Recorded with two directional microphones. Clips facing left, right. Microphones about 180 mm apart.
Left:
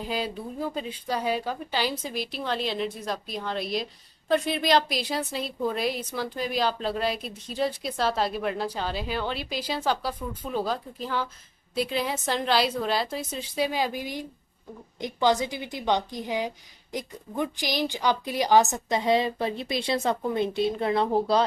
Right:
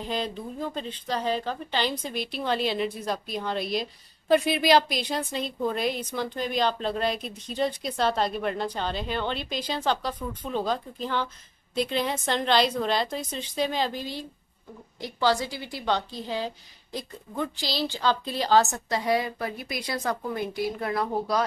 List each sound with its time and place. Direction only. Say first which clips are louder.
0.0 s a woman's voice: even; 5° left (ahead or behind); by 21.5 s 30° left (ahead or behind)